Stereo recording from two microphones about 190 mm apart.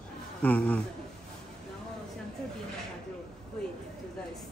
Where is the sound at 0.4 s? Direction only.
10° left (ahead or behind).